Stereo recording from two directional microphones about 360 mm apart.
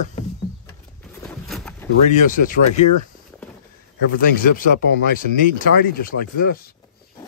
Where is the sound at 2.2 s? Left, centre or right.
Left.